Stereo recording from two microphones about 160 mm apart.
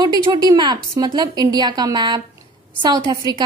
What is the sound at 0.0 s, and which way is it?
A woman's voice, 25° right (ahead or behind).